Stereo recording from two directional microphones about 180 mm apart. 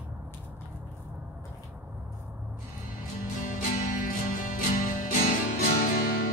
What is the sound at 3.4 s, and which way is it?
Music, 50° left (ahead or behind).